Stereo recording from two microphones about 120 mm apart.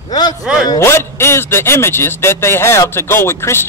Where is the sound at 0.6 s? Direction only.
20° left (ahead or behind).